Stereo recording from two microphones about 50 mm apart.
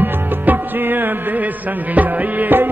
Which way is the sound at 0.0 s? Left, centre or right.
Right.